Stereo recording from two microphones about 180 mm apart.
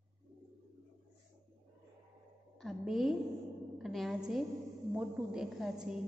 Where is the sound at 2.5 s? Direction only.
Centre (ahead or behind).